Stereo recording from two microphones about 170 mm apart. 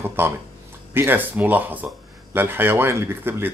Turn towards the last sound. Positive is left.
turn(degrees=-15)  # may be behind; listen again after turning